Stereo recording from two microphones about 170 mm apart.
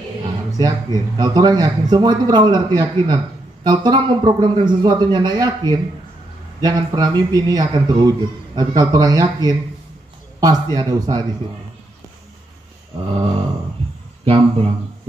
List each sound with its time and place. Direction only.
0.6 s a man's voice: 20° right (ahead or behind)
14.2 s speech: 35° right (ahead or behind)